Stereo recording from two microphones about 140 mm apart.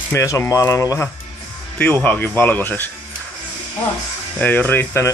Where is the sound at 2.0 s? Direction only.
10° left (ahead or behind).